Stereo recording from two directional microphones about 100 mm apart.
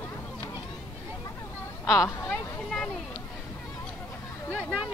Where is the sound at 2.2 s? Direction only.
10° left (ahead or behind).